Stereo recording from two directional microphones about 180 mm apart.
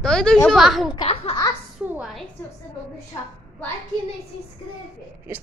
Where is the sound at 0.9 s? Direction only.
30° left (ahead or behind).